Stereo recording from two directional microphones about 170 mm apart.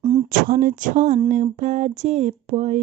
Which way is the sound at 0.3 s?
55° right (ahead or behind).